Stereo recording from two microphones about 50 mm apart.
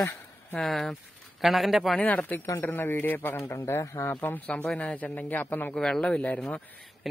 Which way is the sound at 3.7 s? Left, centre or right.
Left.